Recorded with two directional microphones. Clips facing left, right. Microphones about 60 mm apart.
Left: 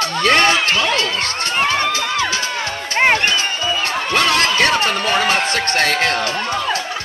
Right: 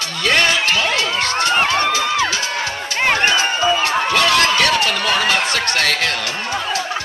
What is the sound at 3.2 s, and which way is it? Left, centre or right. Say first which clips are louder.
Crowd: right 3 dB; right.